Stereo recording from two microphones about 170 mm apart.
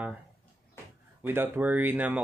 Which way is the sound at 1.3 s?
10° right (ahead or behind).